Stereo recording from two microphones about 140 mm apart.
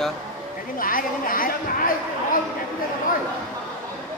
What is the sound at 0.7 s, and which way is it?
Speech, 85° left.